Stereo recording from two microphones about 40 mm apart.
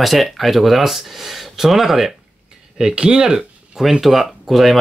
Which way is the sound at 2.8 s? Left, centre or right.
Centre.